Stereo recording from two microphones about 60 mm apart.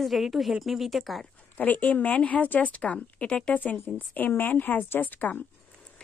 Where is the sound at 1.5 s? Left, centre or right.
Left.